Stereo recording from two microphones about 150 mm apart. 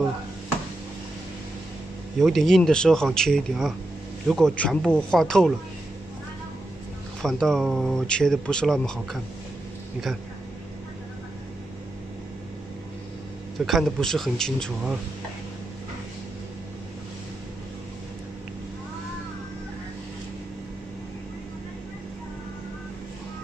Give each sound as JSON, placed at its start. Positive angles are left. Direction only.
{"t": 2.1, "sound": "speech", "side_deg": 0}
{"t": 7.2, "sound": "speech", "side_deg": 5}
{"t": 13.7, "sound": "speech", "side_deg": 0}